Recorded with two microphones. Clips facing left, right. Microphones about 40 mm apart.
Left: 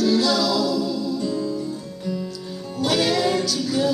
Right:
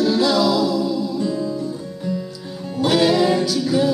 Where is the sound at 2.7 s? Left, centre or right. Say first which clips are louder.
Right 5 dB; centre.